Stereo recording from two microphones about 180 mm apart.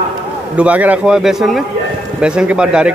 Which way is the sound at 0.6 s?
10° right (ahead or behind).